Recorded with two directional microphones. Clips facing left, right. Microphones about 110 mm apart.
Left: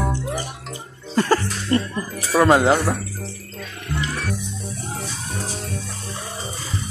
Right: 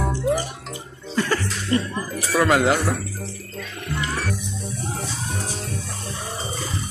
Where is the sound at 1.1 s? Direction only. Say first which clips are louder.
Left 4 dB; 35° left (ahead or behind).